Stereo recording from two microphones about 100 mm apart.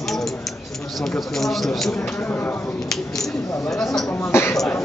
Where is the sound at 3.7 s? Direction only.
5° left (ahead or behind).